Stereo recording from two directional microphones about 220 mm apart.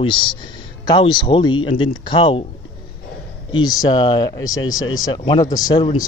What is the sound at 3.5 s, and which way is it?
A man's voice, 15° left (ahead or behind).